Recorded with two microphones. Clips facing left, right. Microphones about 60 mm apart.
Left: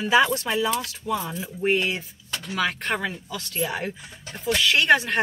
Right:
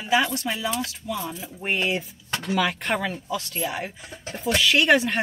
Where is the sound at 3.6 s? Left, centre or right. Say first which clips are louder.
Left 1 dB; centre.